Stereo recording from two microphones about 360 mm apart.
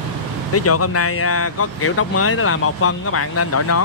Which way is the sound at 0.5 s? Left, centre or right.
Left.